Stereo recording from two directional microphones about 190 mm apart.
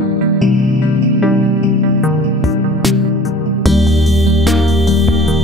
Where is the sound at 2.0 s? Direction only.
Centre (ahead or behind).